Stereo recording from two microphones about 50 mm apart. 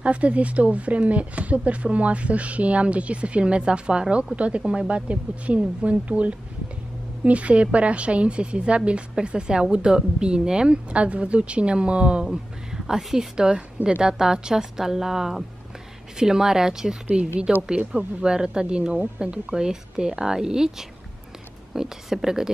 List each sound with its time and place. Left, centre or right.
0.0 s speech: right
12.3 s a woman's voice: centre